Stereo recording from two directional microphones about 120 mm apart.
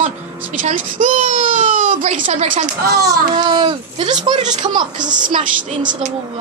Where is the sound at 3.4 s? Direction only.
40° right (ahead or behind).